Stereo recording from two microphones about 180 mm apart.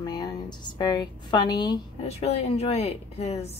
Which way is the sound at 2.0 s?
35° left (ahead or behind).